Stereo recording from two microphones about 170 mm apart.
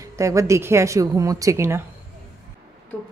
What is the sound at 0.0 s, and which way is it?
A woman's voice, 20° right (ahead or behind).